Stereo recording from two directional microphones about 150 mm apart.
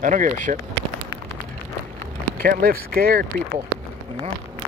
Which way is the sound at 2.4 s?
85° right.